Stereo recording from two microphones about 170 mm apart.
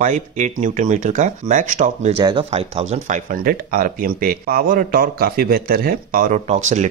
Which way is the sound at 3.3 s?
60° right (ahead or behind).